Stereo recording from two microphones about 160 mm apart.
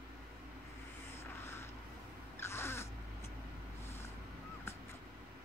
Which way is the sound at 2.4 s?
15° left (ahead or behind).